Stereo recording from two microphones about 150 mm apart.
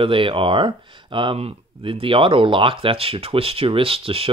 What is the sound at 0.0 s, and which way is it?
Speech, 35° right (ahead or behind).